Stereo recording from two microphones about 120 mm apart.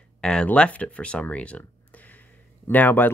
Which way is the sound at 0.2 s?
5° left (ahead or behind).